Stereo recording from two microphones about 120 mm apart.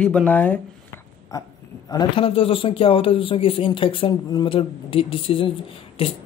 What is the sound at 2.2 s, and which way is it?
Speech, 50° left (ahead or behind).